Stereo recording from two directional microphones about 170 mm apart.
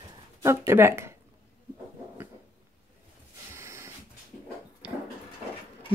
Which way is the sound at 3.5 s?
15° right (ahead or behind).